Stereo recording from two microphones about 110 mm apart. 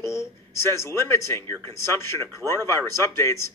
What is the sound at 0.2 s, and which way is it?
A woman's voice, 25° left (ahead or behind).